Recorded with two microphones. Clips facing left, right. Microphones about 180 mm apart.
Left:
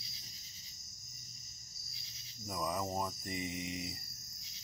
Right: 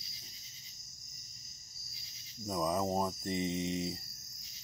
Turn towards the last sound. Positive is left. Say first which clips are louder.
# right 6 dB
turn(degrees=-25)  # may be behind; listen again after turning